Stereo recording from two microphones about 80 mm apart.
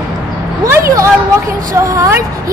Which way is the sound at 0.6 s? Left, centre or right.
Right.